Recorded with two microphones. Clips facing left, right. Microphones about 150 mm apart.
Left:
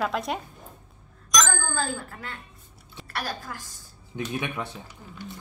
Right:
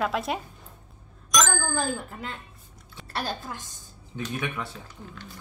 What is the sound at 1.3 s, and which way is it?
Bicycle bell, centre (ahead or behind).